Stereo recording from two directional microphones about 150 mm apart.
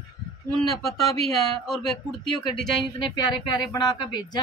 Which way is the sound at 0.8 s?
Centre (ahead or behind).